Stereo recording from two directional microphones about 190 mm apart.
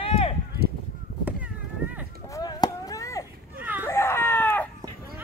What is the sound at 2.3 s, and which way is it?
Chop, 20° left (ahead or behind).